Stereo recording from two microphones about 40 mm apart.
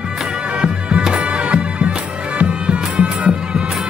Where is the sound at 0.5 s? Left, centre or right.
Right.